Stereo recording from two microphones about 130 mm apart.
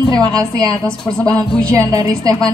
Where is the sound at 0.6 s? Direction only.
25° right (ahead or behind).